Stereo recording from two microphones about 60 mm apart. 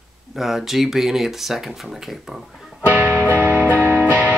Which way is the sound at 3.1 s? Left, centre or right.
Left.